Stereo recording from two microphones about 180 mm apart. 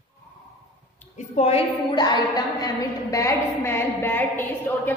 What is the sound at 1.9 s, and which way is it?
A woman's voice, 25° left (ahead or behind).